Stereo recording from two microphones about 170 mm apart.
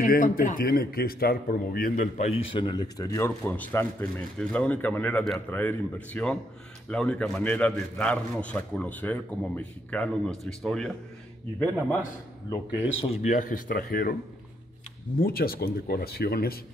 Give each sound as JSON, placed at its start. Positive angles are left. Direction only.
{"t": 0.0, "sound": "speech", "side_deg": 55}
{"t": 2.5, "sound": "a man's voice", "side_deg": 25}
{"t": 13.0, "sound": "speech", "side_deg": 45}
{"t": 15.1, "sound": "speech", "side_deg": 60}